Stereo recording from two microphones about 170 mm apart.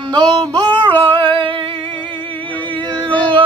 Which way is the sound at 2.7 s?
30° right (ahead or behind).